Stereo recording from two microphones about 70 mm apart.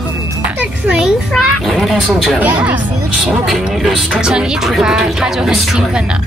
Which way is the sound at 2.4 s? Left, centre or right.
Right.